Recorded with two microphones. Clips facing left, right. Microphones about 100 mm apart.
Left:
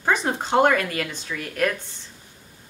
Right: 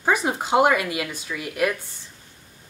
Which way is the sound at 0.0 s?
10° right (ahead or behind).